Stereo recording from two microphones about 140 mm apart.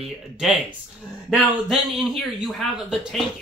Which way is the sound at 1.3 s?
Centre (ahead or behind).